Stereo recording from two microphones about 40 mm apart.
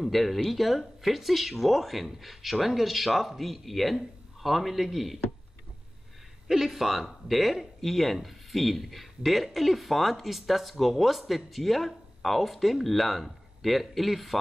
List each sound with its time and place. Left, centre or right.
0.0 s speech: centre
6.4 s speech: centre